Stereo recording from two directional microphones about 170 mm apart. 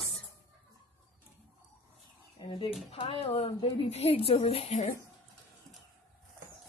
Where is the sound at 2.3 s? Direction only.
30° left (ahead or behind).